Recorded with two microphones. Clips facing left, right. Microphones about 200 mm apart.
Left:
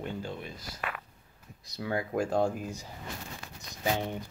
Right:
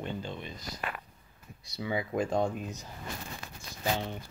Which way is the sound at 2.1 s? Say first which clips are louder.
Left 2 dB; 5° left (ahead or behind).